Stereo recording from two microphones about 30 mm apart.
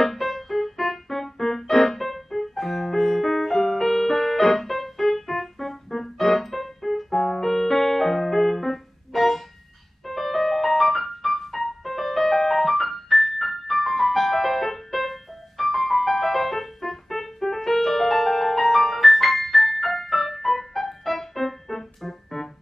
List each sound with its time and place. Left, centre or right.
0.0 s music: centre